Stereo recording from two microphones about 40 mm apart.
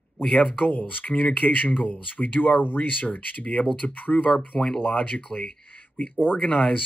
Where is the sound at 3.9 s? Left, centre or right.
Left.